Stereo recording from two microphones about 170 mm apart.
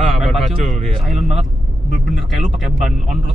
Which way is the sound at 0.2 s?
Centre (ahead or behind).